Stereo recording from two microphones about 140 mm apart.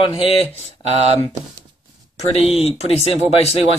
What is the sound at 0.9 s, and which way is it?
Speech, 50° right (ahead or behind).